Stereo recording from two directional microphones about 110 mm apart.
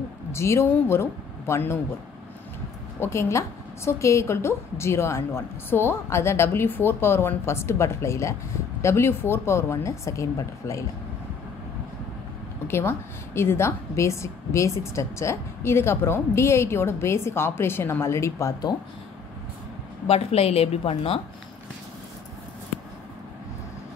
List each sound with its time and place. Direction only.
0.3 s a woman's voice: 25° left (ahead or behind)
3.0 s a woman's voice: 25° left (ahead or behind)
12.6 s a woman's voice: 20° left (ahead or behind)
20.1 s a woman's voice: 65° left (ahead or behind)